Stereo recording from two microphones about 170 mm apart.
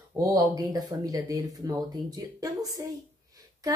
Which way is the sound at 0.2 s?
20° right (ahead or behind).